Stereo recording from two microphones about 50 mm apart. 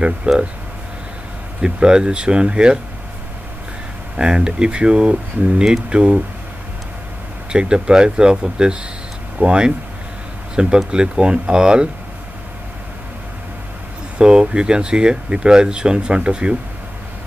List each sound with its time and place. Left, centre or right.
0.3 s speech: right
1.6 s speech: centre
4.2 s speech: centre
7.5 s speech: centre
14.1 s speech: centre